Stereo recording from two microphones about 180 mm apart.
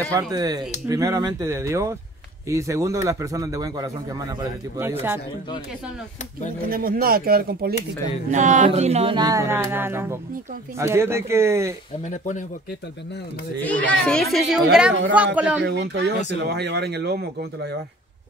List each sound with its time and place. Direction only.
0.1 s a man's voice: 20° right (ahead or behind)
6.7 s speech: 55° right (ahead or behind)
8.0 s speech: 40° right (ahead or behind)
8.6 s music: 35° right (ahead or behind)
9.1 s a man's voice: 20° right (ahead or behind)
12.0 s speech: 45° left (ahead or behind)
13.7 s a child's voice: 5° left (ahead or behind)
15.6 s speech: 70° right (ahead or behind)